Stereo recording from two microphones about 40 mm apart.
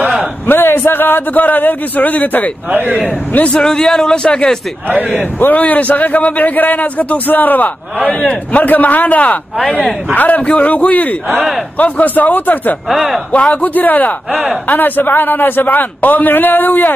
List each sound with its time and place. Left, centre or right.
0.5 s a man's voice: left
3.5 s speech: centre
5.4 s a man's voice: left
8.1 s a man's voice: left
13.3 s a man's voice: left
14.3 s speech: right
14.7 s a man's voice: left